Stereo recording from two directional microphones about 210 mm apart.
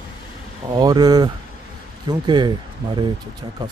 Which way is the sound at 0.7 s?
20° right (ahead or behind).